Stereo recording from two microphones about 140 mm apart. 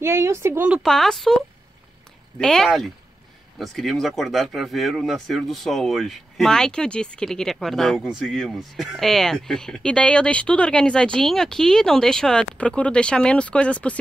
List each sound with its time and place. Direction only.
0.0 s speech: 20° right (ahead or behind)
0.8 s speech: 5° left (ahead or behind)